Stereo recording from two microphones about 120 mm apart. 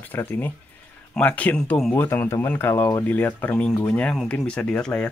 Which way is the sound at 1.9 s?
15° left (ahead or behind).